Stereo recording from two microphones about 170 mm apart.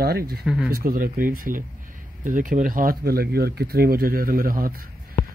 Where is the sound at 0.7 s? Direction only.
60° right (ahead or behind).